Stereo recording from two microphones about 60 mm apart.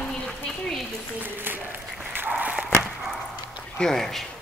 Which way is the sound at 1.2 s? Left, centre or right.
Right.